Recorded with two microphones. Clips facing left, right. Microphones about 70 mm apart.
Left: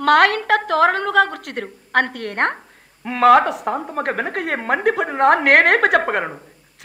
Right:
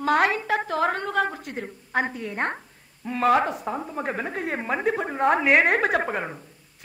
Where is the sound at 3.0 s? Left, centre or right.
Left.